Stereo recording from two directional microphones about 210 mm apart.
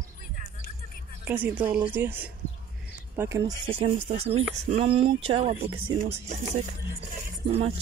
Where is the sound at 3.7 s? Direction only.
25° right (ahead or behind).